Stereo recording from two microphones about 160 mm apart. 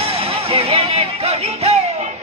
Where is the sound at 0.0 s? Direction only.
35° right (ahead or behind).